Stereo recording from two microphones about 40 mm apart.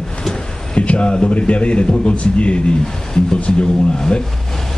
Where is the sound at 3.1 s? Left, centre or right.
Centre.